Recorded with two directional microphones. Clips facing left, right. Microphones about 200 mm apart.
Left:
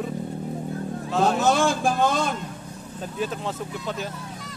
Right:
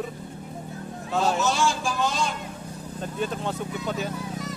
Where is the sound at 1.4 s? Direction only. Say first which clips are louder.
Left 4 dB; 55° left (ahead or behind).